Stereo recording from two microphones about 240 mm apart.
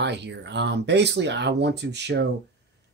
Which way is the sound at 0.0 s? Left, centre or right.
Right.